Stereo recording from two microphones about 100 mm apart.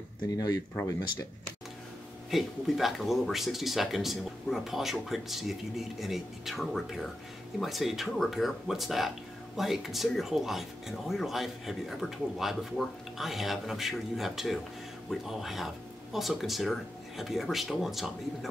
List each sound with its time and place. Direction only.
0.3 s speech: 35° left (ahead or behind)
2.3 s speech: centre (ahead or behind)